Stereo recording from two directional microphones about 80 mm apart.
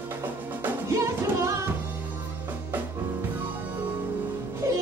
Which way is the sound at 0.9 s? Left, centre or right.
Right.